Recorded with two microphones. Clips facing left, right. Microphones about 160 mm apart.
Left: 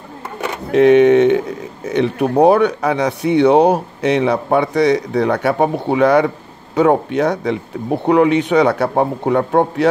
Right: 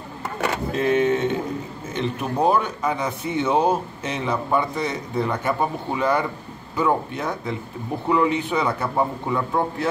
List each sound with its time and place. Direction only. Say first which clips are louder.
0.7 s speech: left 12 dB; 75° left (ahead or behind)